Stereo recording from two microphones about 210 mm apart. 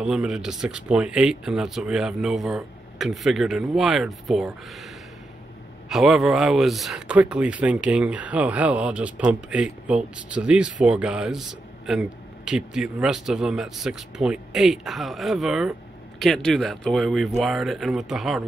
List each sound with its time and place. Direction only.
0.0 s speech: 5° right (ahead or behind)
5.9 s speech: centre (ahead or behind)